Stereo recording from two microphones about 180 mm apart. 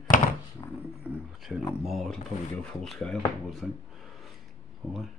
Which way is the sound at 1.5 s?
Centre (ahead or behind).